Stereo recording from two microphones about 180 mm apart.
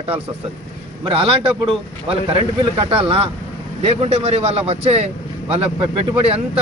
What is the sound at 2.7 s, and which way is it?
A man's voice, 30° right (ahead or behind).